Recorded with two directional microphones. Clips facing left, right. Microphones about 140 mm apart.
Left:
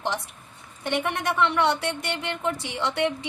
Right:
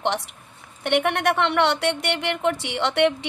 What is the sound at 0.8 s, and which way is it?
Speech, 70° right (ahead or behind).